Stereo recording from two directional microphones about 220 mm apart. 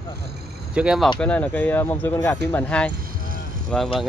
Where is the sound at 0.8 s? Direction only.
5° right (ahead or behind).